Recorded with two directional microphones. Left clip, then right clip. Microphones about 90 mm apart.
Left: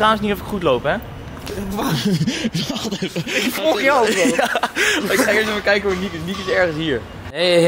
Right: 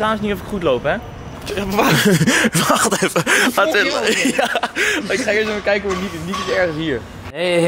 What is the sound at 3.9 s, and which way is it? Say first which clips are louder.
Speech: left 1 dB; centre (ahead or behind).